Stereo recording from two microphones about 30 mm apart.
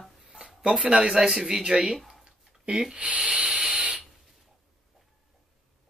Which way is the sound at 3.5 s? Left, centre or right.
Right.